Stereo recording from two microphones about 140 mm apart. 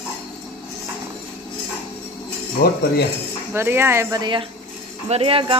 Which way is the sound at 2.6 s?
90° left.